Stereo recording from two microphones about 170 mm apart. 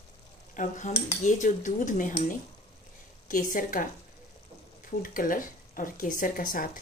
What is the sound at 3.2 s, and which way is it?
Speech, 50° left (ahead or behind).